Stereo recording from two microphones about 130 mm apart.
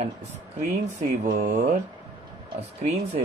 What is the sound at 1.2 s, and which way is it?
Speech, 80° right.